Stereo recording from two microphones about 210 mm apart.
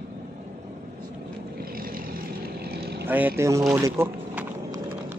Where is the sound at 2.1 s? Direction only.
50° right (ahead or behind).